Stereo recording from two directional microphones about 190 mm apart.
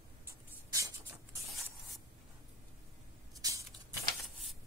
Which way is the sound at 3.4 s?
20° right (ahead or behind).